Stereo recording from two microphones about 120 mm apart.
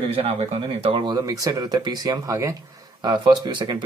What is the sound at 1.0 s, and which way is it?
Speech, 35° right (ahead or behind).